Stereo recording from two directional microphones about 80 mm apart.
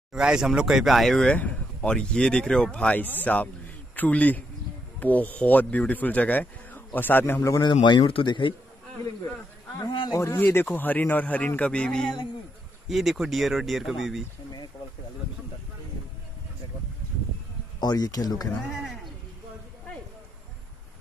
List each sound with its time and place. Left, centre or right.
0.1 s a man's voice: centre; by 7.4 s left
7.6 s speech: left
9.8 s a man's voice: left
10.1 s speech: left; by 14.2 s centre
17.7 s speech: left